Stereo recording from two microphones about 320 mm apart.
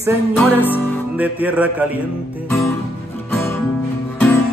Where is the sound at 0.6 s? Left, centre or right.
Centre.